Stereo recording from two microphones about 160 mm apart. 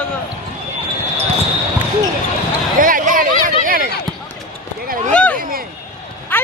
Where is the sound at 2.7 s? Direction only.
60° right (ahead or behind).